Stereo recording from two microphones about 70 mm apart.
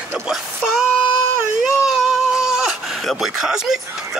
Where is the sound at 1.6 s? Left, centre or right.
Centre.